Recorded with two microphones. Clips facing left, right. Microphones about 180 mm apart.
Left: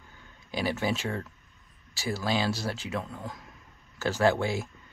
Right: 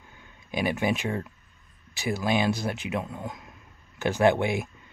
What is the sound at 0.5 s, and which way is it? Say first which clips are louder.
Speech: right 3 dB; 20° right (ahead or behind).